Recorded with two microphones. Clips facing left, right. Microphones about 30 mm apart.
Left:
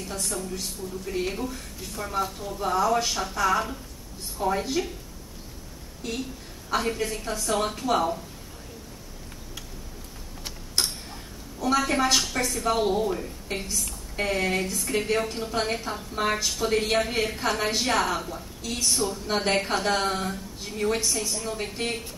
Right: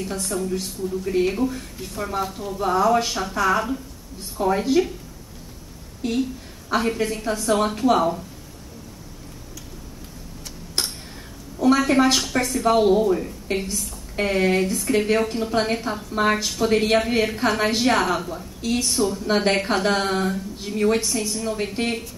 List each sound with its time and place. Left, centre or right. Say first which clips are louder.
0.2 s a woman's voice: right 6 dB; centre
6.0 s a woman's voice: right 8 dB; right
6.7 s a woman's voice: right 4 dB; centre
11.6 s a woman's voice: right 6 dB; centre
18.6 s a woman's voice: right 8 dB; right
18.9 s a woman's voice: right 2 dB; centre